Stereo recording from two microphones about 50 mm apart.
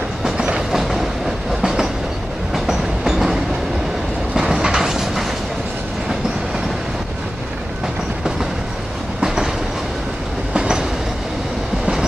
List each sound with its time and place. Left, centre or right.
0.7 s train: centre
4.4 s train: centre
9.2 s train: centre
10.5 s train: centre